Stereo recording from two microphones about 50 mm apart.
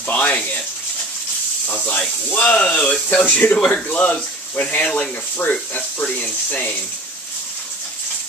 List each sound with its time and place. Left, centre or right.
0.0 s a sound: left
1.7 s speech: left
3.5 s speech: centre